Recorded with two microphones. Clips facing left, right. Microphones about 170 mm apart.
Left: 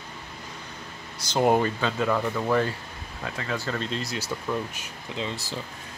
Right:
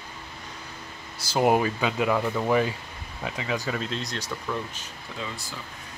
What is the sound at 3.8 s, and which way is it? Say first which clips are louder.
Speech: left 1 dB; centre (ahead or behind).